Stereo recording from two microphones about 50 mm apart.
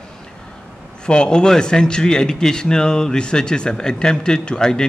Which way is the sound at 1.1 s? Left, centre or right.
Centre.